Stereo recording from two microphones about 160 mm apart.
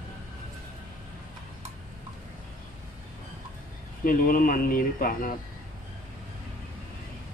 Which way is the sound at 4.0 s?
60° left (ahead or behind).